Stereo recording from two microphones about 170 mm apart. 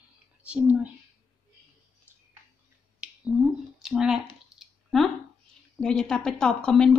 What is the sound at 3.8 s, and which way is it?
Speech, 5° right (ahead or behind).